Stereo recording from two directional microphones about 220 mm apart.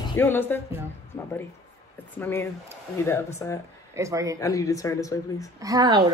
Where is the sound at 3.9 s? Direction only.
15° right (ahead or behind).